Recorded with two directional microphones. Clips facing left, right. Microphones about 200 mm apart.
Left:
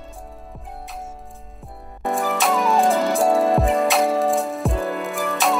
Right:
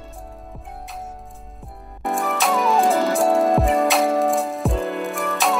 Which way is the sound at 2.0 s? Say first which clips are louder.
Left 1 dB; centre (ahead or behind).